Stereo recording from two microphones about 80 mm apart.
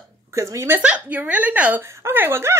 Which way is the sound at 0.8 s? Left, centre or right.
Centre.